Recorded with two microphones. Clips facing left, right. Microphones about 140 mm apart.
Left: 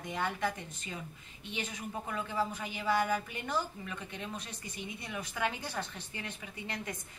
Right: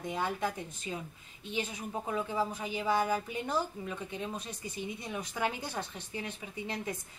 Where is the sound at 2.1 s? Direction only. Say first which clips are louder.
Right 2 dB; 15° right (ahead or behind).